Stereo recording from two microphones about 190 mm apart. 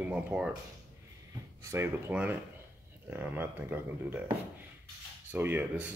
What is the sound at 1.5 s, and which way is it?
Speech, 15° right (ahead or behind).